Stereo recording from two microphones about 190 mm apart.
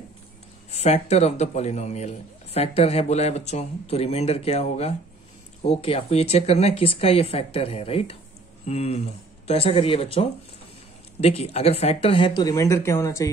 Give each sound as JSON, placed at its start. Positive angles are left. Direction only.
{"t": 0.7, "sound": "a man's voice", "side_deg": 35}